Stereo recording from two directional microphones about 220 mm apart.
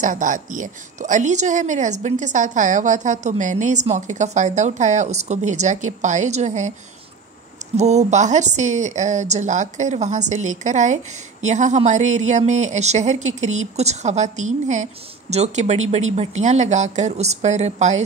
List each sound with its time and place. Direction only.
0.0 s a woman's voice: 35° right (ahead or behind)
7.7 s a woman's voice: 30° right (ahead or behind)